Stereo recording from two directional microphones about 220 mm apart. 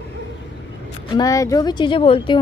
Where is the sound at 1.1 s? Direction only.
15° left (ahead or behind).